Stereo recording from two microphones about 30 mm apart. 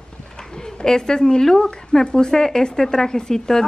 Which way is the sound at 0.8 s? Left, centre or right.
Left.